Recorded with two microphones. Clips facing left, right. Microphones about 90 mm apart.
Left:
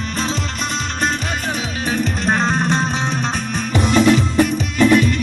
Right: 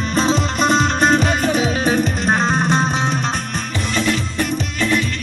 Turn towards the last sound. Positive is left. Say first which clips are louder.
# left 6 dB
turn(degrees=20)  # may be behind; listen again after turning